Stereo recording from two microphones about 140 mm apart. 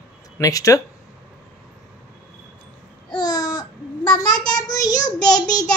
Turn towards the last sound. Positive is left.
turn(degrees=25)  # may be behind; listen again after turning